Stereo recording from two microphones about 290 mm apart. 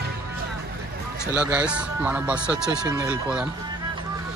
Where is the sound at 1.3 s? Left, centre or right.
Centre.